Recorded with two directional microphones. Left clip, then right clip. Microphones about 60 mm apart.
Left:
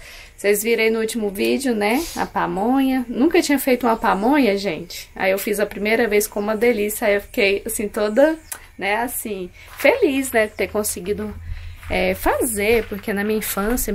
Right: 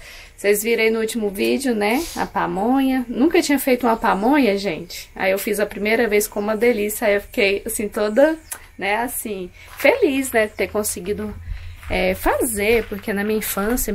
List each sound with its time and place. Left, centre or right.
0.4 s speech: left
13.5 s speech: centre